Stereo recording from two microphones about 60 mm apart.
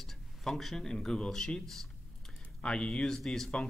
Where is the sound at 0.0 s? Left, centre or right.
Centre.